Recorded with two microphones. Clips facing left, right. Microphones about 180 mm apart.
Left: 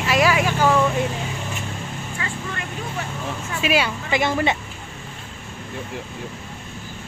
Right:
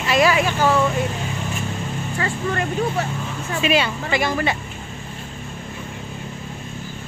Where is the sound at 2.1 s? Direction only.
45° right (ahead or behind).